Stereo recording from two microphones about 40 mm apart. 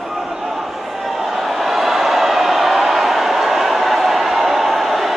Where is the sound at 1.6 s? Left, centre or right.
Centre.